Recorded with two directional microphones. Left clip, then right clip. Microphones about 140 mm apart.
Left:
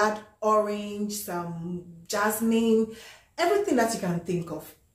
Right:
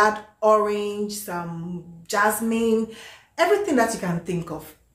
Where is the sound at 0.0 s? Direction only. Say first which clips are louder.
Right 6 dB; 15° right (ahead or behind).